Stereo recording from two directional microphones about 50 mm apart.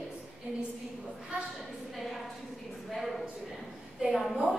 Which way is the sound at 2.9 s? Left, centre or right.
Centre.